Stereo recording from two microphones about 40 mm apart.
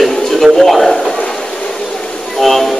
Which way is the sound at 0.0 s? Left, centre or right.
Centre.